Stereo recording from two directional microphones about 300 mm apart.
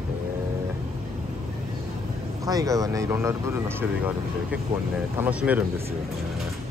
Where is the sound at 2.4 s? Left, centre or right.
Centre.